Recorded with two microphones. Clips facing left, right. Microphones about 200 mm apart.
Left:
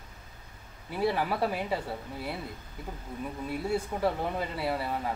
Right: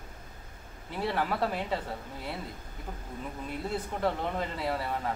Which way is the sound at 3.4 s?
10° left (ahead or behind).